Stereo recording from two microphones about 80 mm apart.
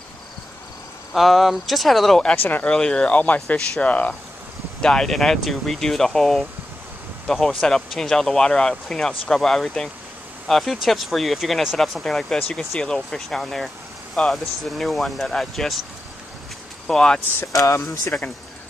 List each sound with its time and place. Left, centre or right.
1.1 s speech: centre
2.3 s speech: left
2.7 s speech: centre
16.8 s speech: centre
17.5 s speech: left
18.1 s speech: left